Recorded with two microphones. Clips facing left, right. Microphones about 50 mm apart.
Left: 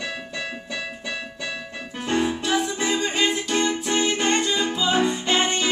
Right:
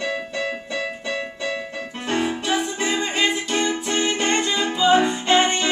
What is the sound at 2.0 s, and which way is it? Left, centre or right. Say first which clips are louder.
Music: even; right.